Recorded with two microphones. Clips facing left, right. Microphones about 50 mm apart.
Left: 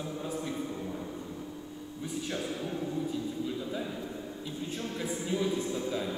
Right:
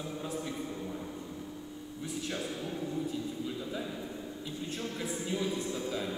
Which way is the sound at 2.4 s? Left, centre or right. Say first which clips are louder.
Left 2 dB; left.